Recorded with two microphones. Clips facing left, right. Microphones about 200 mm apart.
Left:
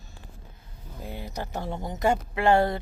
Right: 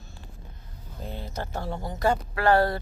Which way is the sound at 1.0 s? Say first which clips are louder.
Even; 15° left (ahead or behind).